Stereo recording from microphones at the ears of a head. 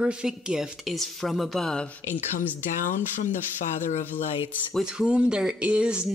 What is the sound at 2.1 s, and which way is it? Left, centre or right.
Speech, left.